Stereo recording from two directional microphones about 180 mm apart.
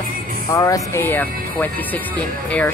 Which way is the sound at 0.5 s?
20° left (ahead or behind).